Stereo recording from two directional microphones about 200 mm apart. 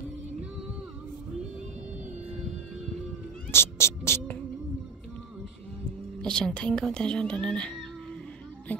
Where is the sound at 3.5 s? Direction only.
15° left (ahead or behind).